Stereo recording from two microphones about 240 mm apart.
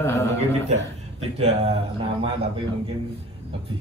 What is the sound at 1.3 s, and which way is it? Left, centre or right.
A man's voice, right.